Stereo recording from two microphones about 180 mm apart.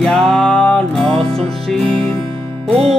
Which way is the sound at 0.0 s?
5° left (ahead or behind).